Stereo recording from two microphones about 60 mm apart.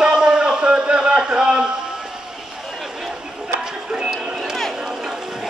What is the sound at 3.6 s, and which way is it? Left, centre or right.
Music, centre.